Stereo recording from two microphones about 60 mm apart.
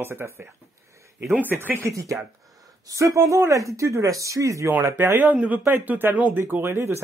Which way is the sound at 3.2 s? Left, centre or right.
Right.